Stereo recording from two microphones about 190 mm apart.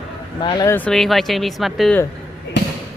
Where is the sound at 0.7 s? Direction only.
5° left (ahead or behind).